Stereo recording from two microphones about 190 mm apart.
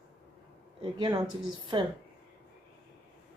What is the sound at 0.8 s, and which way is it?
Speech, 25° right (ahead or behind).